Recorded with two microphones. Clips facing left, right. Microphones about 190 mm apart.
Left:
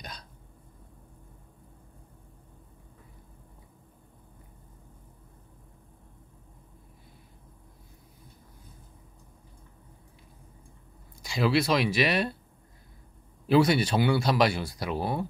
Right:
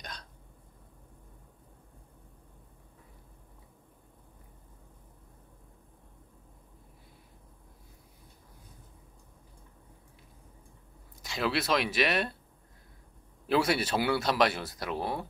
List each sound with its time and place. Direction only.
11.2 s speech: centre (ahead or behind)
13.5 s speech: 5° right (ahead or behind)